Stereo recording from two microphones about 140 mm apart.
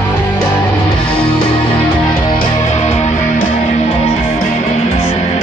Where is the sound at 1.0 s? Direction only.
40° left (ahead or behind).